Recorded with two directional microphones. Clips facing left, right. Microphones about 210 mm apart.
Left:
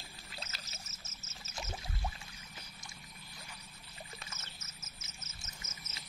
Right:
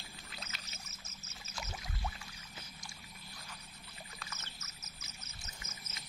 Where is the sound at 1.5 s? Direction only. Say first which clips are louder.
Left 2 dB; 20° left (ahead or behind).